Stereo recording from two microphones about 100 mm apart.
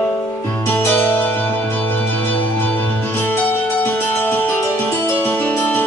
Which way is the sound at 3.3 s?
20° left (ahead or behind).